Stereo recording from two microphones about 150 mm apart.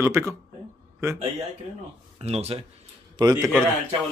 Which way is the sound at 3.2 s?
25° right (ahead or behind).